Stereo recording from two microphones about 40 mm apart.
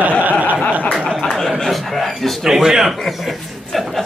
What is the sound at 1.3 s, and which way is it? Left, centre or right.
Speech, centre.